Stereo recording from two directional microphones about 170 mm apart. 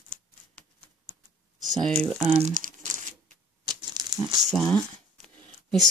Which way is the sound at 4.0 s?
25° right (ahead or behind).